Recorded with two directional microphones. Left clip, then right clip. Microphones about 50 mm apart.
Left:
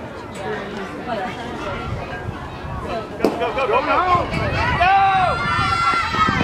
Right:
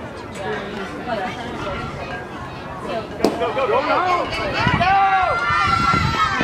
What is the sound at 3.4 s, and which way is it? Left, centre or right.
Speech, left.